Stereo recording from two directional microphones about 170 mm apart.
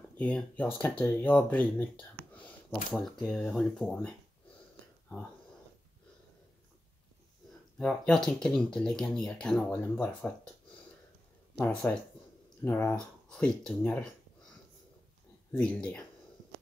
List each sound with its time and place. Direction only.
0.2 s speech: 10° left (ahead or behind)
7.8 s speech: 5° left (ahead or behind)
11.6 s speech: 5° left (ahead or behind)
15.5 s speech: 5° left (ahead or behind)